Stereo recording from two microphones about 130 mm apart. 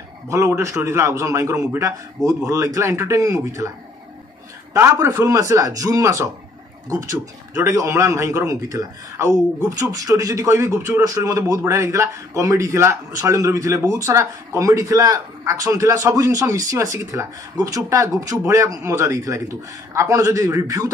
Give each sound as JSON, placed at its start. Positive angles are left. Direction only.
{"t": 0.3, "sound": "a man's voice", "side_deg": -25}
{"t": 4.7, "sound": "a man's voice", "side_deg": -20}